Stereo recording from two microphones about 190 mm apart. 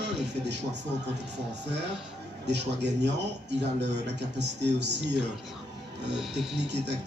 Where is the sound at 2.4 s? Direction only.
65° right (ahead or behind).